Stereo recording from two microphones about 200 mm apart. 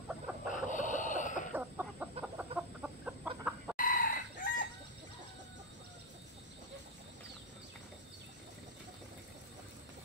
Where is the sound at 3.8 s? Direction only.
45° left (ahead or behind).